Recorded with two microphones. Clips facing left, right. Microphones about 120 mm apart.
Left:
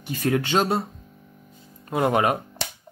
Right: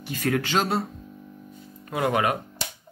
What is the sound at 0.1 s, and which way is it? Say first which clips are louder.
Speech: left 2 dB; 20° left (ahead or behind).